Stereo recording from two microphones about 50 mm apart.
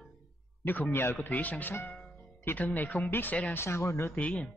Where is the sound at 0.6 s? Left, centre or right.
Left.